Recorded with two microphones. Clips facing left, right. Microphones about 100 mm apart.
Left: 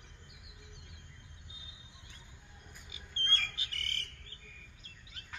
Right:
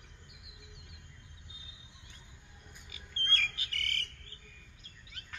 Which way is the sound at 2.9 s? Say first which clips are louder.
Right 1 dB; 25° left (ahead or behind).